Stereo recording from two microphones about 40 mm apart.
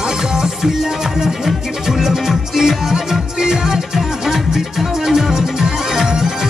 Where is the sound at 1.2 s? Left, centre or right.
Centre.